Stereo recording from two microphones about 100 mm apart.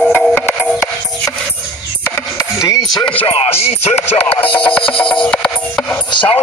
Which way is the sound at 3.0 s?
65° left (ahead or behind).